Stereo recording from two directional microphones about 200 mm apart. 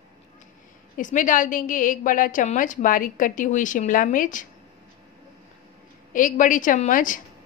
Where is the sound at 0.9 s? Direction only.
40° left (ahead or behind).